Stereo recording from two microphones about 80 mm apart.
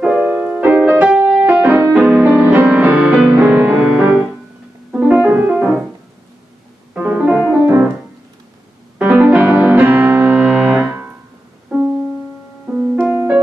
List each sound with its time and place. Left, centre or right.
0.2 s music: right
6.9 s music: centre
7.5 s piano: right
8.9 s music: centre
11.7 s music: centre